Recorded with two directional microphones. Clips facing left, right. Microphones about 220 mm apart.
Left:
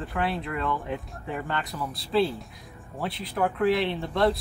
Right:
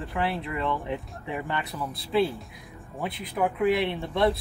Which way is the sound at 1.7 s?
5° right (ahead or behind).